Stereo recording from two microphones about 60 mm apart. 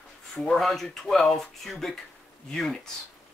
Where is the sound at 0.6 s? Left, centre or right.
Centre.